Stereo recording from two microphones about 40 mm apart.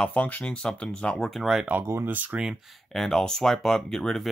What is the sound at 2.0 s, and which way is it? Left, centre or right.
Speech, right.